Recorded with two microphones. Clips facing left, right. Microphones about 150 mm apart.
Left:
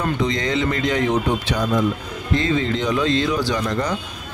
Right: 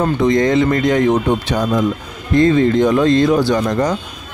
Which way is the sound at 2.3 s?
50° right (ahead or behind).